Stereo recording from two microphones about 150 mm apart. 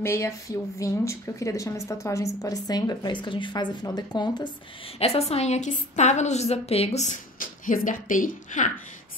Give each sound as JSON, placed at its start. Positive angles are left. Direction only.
{"t": 0.0, "sound": "speech", "side_deg": 20}
{"t": 4.9, "sound": "a woman's voice", "side_deg": 40}